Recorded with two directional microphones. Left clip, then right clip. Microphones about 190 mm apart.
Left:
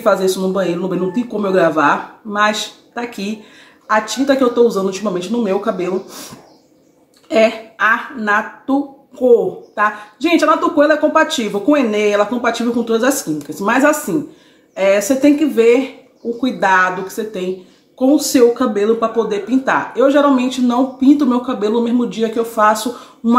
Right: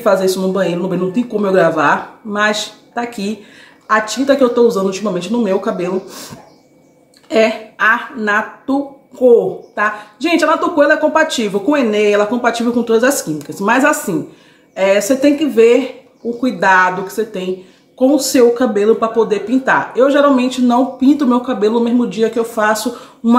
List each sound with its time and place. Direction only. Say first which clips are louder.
0.0 s speech: right 1 dB; centre (ahead or behind)
7.2 s speech: even; 5° right (ahead or behind)